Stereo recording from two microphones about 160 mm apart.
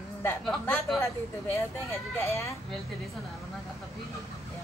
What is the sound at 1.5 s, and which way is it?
Speech, 15° left (ahead or behind).